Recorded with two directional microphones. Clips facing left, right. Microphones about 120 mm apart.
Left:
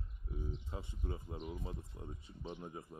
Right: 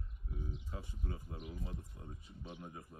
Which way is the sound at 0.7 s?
25° left (ahead or behind).